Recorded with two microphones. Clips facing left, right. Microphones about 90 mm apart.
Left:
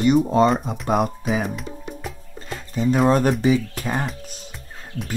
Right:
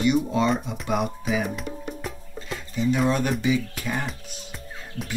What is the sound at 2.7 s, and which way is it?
Speech, 40° left (ahead or behind).